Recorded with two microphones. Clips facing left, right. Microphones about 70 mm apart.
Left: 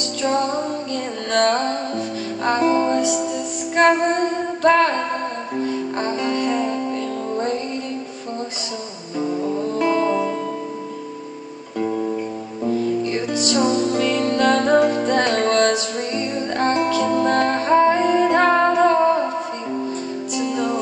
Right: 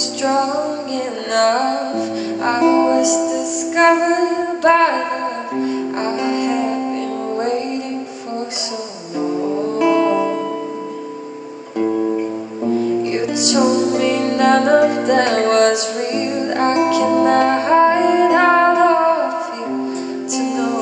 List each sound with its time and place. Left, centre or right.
0.2 s music: centre
4.6 s singing: right
5.9 s music: centre
9.2 s music: centre
9.8 s music: right
11.8 s music: centre
13.5 s music: centre
18.9 s music: right
20.3 s music: centre